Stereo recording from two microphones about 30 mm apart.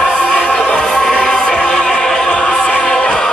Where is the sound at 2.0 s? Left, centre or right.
Left.